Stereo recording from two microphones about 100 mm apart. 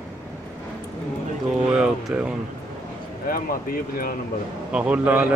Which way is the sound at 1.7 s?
10° right (ahead or behind).